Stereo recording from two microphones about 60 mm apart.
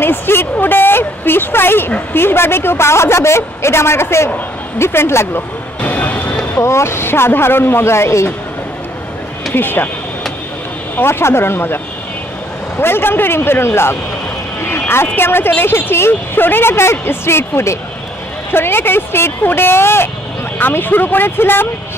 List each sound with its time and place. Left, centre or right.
0.0 s a woman's voice: left
5.8 s vehicle: left
6.6 s a woman's voice: left
9.5 s speech: left
11.0 s speech: left